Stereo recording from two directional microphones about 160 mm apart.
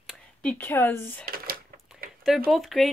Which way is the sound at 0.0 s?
5° left (ahead or behind).